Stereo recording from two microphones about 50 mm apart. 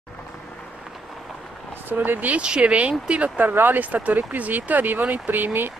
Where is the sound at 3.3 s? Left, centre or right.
Right.